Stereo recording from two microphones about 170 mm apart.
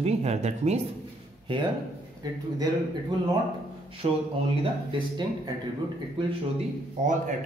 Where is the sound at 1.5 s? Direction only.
30° right (ahead or behind).